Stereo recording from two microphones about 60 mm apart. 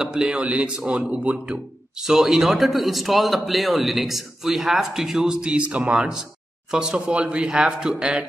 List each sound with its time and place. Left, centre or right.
0.0 s speech: centre
2.0 s a man's voice: centre